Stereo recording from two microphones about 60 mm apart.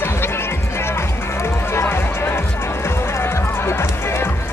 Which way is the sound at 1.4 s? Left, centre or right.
Left.